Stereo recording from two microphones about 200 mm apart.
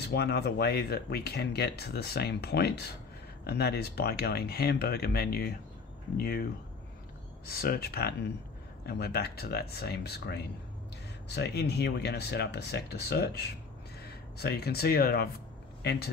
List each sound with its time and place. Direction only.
0.1 s speech: 55° left (ahead or behind)